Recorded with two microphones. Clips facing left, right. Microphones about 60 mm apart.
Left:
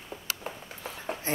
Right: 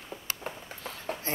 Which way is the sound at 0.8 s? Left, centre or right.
Centre.